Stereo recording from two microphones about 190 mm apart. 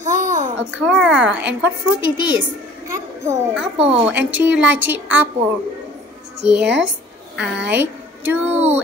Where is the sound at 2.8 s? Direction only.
15° right (ahead or behind).